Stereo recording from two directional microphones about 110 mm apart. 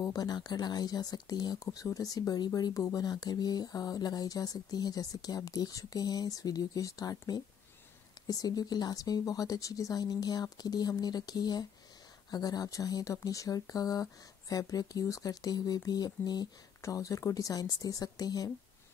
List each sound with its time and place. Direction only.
0.0 s speech: 35° left (ahead or behind)